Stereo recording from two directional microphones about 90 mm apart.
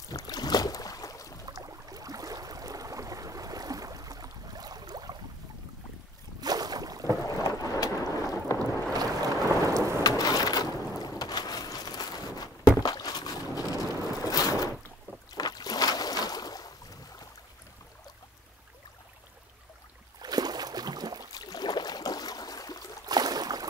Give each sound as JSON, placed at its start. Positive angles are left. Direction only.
{"t": 0.1, "sound": "boat", "side_deg": 45}
{"t": 1.5, "sound": "a sound", "side_deg": -40}
{"t": 6.4, "sound": "boat", "side_deg": -45}
{"t": 7.2, "sound": "boat", "side_deg": 45}
{"t": 9.7, "sound": "thunder", "side_deg": -35}
{"t": 10.0, "sound": "boat", "side_deg": 45}
{"t": 20.2, "sound": "boat", "side_deg": -50}
{"t": 21.3, "sound": "a sound", "side_deg": 45}
{"t": 23.0, "sound": "a sound", "side_deg": -45}